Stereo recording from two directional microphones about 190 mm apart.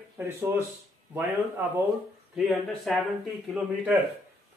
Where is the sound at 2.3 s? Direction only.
Centre (ahead or behind).